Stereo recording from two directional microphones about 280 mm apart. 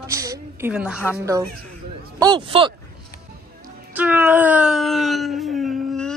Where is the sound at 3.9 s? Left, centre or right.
Centre.